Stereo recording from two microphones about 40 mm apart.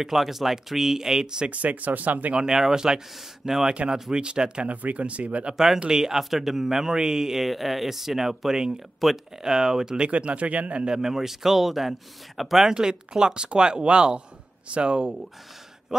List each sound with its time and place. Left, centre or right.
0.0 s speech: centre
1.5 s speech: right
2.3 s speech: centre; by 5.5 s right
5.8 s speech: centre
10.1 s speech: right
10.9 s speech: centre
12.6 s speech: centre